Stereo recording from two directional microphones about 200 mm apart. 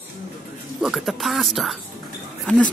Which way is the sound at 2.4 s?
Centre (ahead or behind).